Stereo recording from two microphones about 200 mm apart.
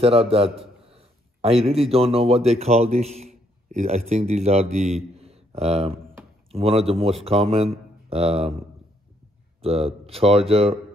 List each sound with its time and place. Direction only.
0.0 s a man's voice: 30° right (ahead or behind)
9.6 s speech: 30° right (ahead or behind)